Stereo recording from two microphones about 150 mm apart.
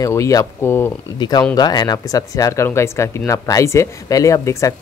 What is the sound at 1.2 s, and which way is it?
Speech, 30° left (ahead or behind).